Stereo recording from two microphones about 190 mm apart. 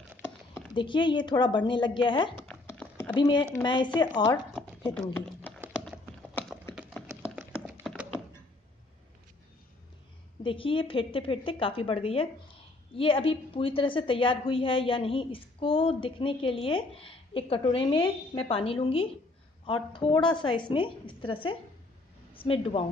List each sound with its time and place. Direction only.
0.7 s a woman's voice: 25° left (ahead or behind)
2.6 s clip-clop: 10° left (ahead or behind)
3.2 s a woman's voice: 25° left (ahead or behind)
4.9 s speech: 10° left (ahead or behind)
6.7 s a sound: centre (ahead or behind)
10.4 s a woman's voice: 25° left (ahead or behind)